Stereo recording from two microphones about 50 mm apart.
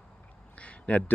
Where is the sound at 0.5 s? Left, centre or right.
Left.